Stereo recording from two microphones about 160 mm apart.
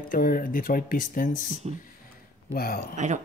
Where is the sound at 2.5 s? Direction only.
65° left (ahead or behind).